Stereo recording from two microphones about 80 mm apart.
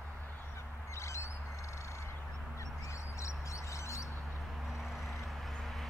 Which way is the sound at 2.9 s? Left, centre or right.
Left.